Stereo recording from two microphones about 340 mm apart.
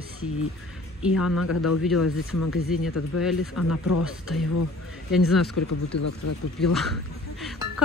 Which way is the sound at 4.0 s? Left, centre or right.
Centre.